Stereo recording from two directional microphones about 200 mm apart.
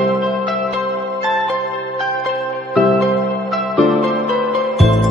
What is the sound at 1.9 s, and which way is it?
Music, centre (ahead or behind).